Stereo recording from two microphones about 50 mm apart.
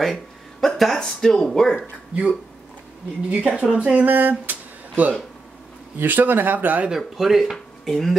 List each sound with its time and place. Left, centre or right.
0.0 s speech: centre
1.8 s speech: centre
4.1 s a sound: right
5.9 s speech: right
7.0 s speech: centre